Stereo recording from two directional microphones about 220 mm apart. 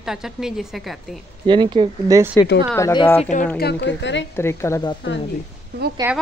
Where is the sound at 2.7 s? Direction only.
15° left (ahead or behind).